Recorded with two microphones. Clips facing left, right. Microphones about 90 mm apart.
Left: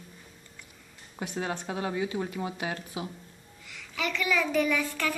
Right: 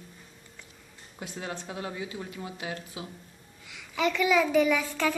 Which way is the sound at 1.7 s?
45° left (ahead or behind).